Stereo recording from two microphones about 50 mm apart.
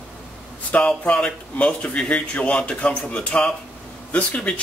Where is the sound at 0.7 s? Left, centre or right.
Left.